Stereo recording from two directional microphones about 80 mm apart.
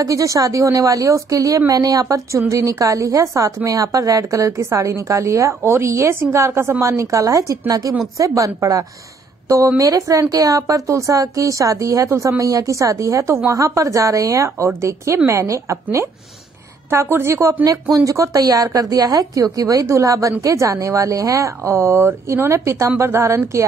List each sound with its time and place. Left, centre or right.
0.0 s a woman's voice: right